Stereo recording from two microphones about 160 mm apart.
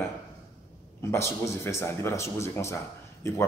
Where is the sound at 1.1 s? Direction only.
15° left (ahead or behind).